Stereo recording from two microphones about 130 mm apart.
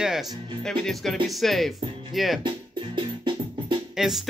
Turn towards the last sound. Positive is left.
turn(degrees=-5)  # may be behind; listen again after turning